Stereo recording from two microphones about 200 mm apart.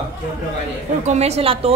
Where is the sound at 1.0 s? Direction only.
35° right (ahead or behind).